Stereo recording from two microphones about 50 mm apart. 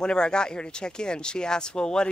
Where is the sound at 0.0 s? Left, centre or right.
Centre.